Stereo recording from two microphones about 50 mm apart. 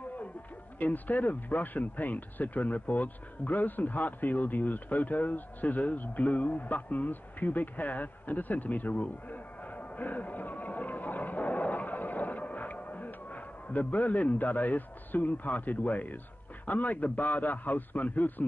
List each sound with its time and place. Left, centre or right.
0.7 s a man's voice: left